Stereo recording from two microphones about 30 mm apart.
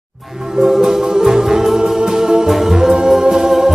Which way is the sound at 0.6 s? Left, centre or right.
Centre.